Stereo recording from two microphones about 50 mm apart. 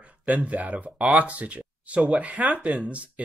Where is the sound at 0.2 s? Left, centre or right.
Right.